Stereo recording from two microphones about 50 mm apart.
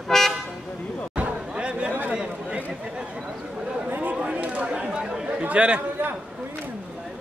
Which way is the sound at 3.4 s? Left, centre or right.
Centre.